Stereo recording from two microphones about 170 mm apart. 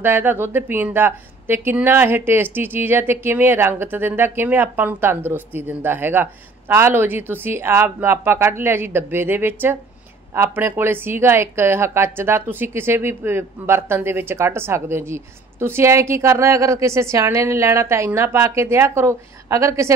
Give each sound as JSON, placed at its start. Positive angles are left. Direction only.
{"t": 0.0, "sound": "a woman's voice", "side_deg": -15}